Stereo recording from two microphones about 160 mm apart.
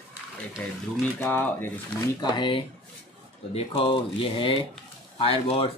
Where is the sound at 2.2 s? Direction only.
30° left (ahead or behind).